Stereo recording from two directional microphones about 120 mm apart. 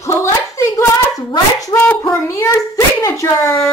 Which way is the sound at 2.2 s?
30° left (ahead or behind).